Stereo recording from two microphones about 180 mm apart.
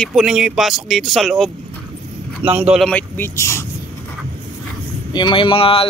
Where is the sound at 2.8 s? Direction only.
10° left (ahead or behind).